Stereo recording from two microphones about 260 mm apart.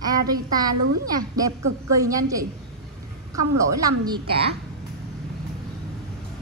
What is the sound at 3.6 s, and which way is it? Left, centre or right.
Speech, centre.